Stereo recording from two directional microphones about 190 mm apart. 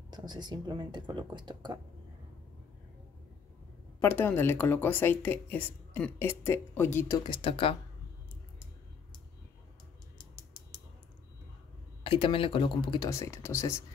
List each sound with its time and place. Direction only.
0.1 s speech: 20° right (ahead or behind)
4.0 s speech: 10° left (ahead or behind)
7.2 s speech: 25° left (ahead or behind)
12.0 s speech: 25° left (ahead or behind)